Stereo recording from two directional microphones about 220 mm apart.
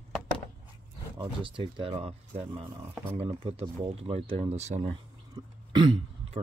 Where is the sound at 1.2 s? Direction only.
20° right (ahead or behind).